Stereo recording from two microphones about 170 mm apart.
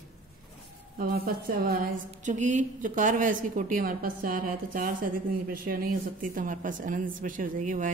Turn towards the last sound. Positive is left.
turn(degrees=-45)  # may be behind; listen again after turning